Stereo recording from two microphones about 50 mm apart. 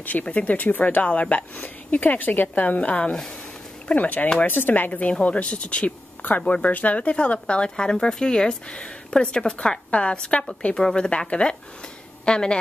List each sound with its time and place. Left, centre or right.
0.0 s speech: left
10.8 s speech: centre
11.1 s speech: left